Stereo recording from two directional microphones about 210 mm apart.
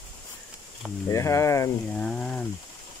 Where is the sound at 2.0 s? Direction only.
5° left (ahead or behind).